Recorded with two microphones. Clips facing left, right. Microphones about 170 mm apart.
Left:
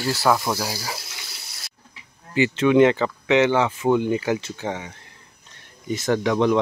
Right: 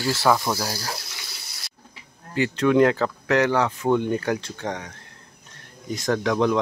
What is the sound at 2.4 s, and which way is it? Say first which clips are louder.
Speech: left 2 dB; centre (ahead or behind).